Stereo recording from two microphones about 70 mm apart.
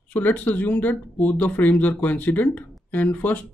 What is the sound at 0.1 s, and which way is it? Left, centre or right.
Speech, left.